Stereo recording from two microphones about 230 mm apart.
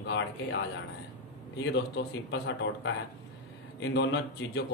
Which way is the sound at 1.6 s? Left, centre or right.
Left.